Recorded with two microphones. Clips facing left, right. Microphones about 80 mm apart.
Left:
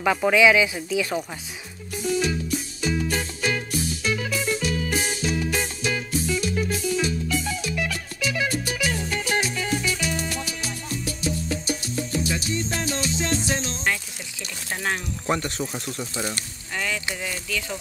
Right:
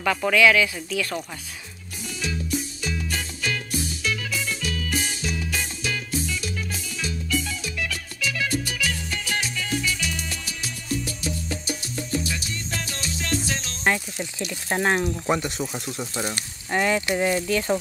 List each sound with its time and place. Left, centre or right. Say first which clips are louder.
0.0 s speech: left 1 dB; centre
2.8 s music: left 5 dB; left
12.3 s music: left 5 dB; left
14.7 s speech: right 6 dB; right
15.2 s speech: right 1 dB; centre
16.7 s speech: right 7 dB; right